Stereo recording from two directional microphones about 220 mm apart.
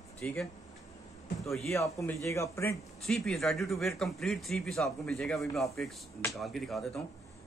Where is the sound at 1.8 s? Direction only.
15° left (ahead or behind).